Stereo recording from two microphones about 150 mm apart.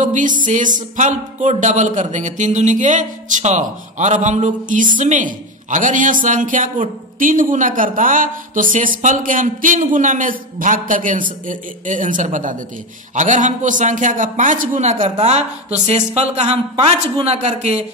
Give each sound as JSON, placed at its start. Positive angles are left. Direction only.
{"t": 0.0, "sound": "music", "side_deg": -60}
{"t": 15.1, "sound": "a man's voice", "side_deg": -45}